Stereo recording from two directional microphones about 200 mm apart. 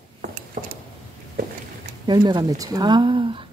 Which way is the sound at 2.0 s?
20° right (ahead or behind).